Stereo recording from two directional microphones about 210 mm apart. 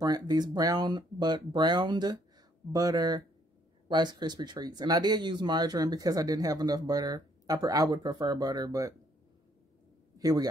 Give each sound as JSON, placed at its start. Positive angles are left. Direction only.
{"t": 0.0, "sound": "speech", "side_deg": -20}
{"t": 10.1, "sound": "a man's voice", "side_deg": -20}